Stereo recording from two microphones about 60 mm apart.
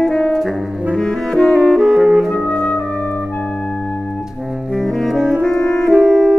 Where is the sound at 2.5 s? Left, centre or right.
Left.